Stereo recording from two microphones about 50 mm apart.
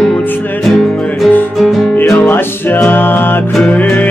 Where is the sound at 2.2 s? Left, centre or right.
Left.